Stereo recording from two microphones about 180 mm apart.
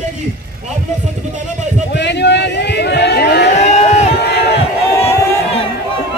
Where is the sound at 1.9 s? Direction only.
70° left (ahead or behind).